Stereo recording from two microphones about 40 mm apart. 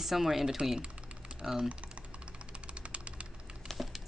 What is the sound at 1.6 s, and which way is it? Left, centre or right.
Typing, right.